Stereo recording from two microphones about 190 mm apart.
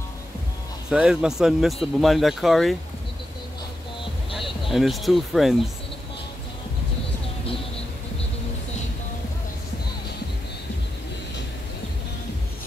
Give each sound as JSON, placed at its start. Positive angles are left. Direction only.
{"t": 0.8, "sound": "speech", "side_deg": -5}
{"t": 4.6, "sound": "speech", "side_deg": 0}